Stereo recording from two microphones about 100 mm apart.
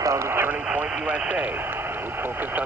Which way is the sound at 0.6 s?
10° right (ahead or behind).